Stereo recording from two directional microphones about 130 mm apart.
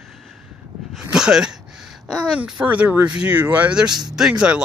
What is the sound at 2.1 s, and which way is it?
Speech, 5° right (ahead or behind).